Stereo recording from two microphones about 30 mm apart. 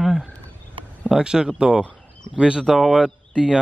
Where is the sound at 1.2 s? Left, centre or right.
Right.